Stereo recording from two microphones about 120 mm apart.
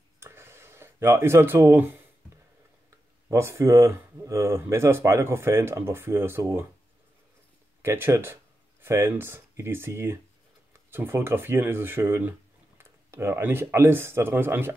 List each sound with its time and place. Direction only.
0.2 s a sound: 20° right (ahead or behind)
3.3 s speech: 25° right (ahead or behind)
7.8 s speech: 20° right (ahead or behind)